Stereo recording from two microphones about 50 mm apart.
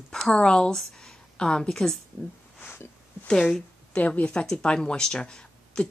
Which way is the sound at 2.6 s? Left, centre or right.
Left.